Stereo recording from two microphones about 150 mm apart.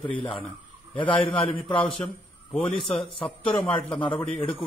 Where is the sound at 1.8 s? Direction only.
10° left (ahead or behind).